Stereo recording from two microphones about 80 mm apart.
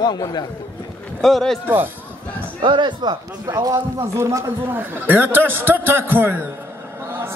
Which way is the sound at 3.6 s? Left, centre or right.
Right.